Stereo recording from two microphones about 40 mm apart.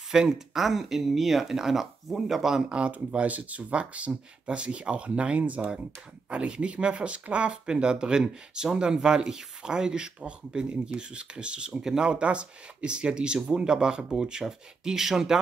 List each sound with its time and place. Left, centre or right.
0.1 s speech: centre
3.1 s speech: right
5.4 s speech: right
6.3 s speech: right
8.2 s speech: centre
8.7 s speech: right
11.7 s speech: centre
12.1 s speech: right